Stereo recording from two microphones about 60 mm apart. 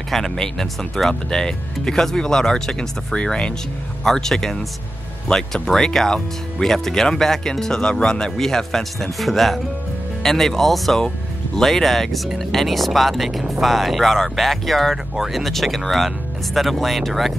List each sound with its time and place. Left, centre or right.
0.1 s speech: centre